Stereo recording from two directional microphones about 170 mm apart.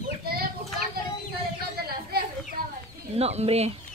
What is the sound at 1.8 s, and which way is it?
Children playing, 65° right (ahead or behind).